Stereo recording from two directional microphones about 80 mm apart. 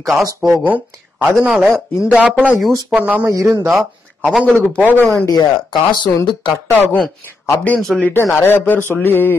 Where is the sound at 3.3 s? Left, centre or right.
Right.